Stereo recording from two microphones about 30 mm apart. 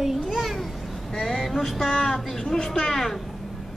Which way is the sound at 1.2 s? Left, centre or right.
Centre.